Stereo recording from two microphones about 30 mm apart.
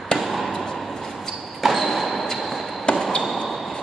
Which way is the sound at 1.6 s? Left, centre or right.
Centre.